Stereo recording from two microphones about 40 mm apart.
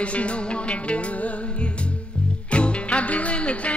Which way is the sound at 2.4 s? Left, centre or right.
Left.